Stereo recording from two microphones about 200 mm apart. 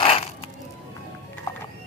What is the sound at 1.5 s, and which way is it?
Music, 15° left (ahead or behind).